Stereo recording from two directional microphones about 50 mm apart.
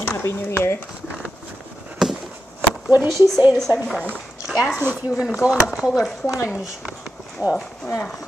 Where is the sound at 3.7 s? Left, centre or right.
Right.